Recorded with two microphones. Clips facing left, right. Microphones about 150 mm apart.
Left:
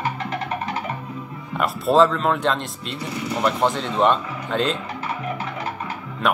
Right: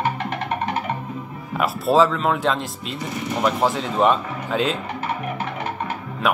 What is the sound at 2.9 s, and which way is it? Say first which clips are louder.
Speech: even; 25° right (ahead or behind).